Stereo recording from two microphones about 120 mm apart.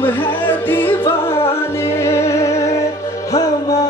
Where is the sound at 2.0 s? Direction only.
25° left (ahead or behind).